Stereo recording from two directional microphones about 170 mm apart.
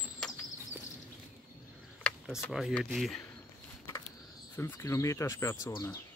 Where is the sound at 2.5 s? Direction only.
Centre (ahead or behind).